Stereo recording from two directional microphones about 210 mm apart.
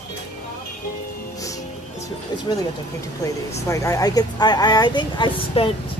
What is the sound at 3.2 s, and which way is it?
Speech, 15° left (ahead or behind).